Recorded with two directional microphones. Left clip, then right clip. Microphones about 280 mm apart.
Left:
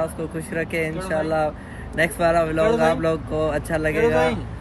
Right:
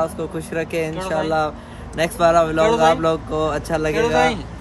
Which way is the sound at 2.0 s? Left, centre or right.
Centre.